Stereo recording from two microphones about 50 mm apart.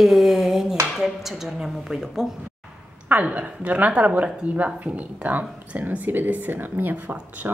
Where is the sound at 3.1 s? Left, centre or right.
Right.